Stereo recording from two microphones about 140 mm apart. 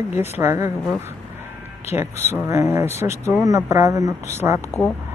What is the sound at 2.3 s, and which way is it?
Speech, 20° right (ahead or behind).